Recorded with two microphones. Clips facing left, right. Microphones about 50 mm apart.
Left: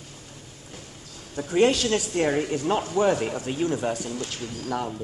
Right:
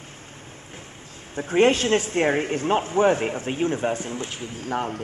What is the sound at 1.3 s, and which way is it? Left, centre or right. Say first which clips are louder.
A man's voice: right 2 dB; right.